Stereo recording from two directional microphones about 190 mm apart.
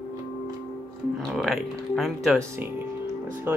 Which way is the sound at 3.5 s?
10° right (ahead or behind).